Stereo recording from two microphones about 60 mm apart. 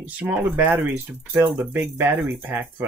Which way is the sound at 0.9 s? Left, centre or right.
Right.